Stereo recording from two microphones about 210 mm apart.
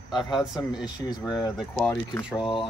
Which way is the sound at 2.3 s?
25° left (ahead or behind).